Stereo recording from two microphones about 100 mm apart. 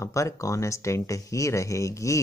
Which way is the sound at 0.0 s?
30° left (ahead or behind).